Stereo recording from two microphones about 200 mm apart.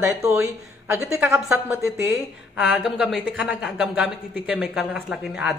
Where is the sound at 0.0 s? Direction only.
15° right (ahead or behind).